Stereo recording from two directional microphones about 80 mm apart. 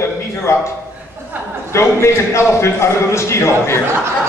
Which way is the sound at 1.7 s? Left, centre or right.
Left.